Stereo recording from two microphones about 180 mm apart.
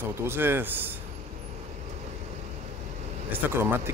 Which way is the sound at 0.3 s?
10° right (ahead or behind).